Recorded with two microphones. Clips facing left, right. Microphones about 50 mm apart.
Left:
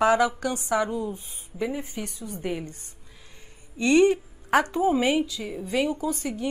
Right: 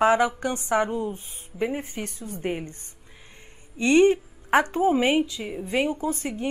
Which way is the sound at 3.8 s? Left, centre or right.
Right.